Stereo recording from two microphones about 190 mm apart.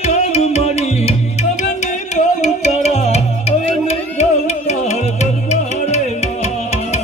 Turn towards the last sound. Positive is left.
turn(degrees=35)  # may be behind; listen again after turning